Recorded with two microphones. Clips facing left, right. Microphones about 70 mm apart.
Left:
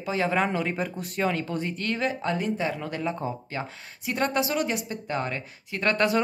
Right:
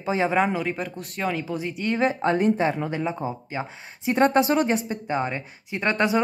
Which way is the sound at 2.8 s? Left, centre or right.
Centre.